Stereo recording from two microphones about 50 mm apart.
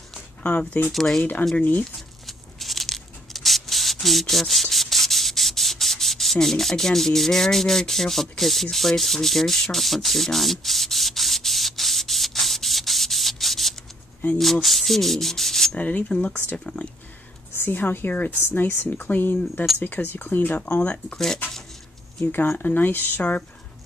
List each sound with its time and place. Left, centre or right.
0.4 s speech: left
0.9 s speech: centre
1.6 s speech: left
2.0 s a sound: centre
8.6 s sanding: centre
14.4 s rub: centre
15.8 s speech: left
16.1 s speech: left
17.6 s speech: left
20.8 s speech: left
22.2 s speech: left